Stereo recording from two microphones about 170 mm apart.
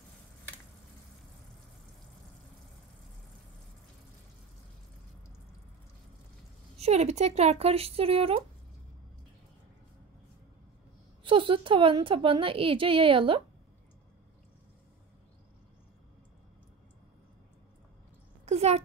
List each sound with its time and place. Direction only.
6.8 s a woman's voice: 40° right (ahead or behind)
11.2 s a woman's voice: 30° right (ahead or behind)
18.4 s a sound: 40° right (ahead or behind)